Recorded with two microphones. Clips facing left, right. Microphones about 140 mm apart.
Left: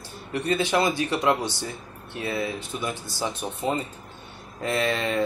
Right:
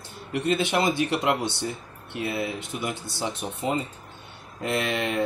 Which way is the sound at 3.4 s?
20° left (ahead or behind).